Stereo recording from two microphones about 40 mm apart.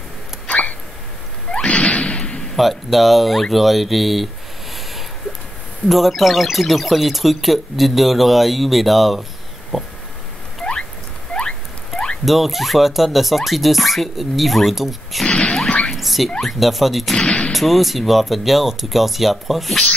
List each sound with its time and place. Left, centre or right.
0.5 s a sound: left
2.5 s speech: centre
5.9 s speech: centre
10.6 s rodents: left
12.3 s speech: centre
16.0 s rodents: centre
16.3 s speech: centre
17.1 s speech: centre
17.5 s speech: centre